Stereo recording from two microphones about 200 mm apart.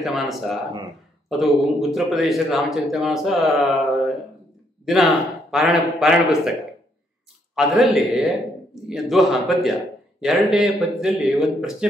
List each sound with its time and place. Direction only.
0.0 s a man's voice: centre (ahead or behind)
7.5 s a man's voice: centre (ahead or behind)